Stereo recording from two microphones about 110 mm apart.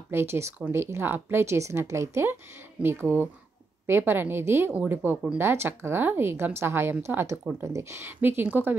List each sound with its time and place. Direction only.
0.1 s speech: 20° right (ahead or behind)